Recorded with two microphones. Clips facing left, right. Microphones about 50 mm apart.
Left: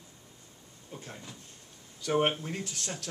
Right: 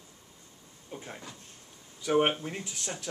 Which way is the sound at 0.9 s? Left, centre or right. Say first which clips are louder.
Right 2 dB; centre.